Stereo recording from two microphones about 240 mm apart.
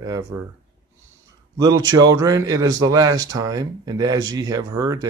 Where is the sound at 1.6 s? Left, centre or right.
Centre.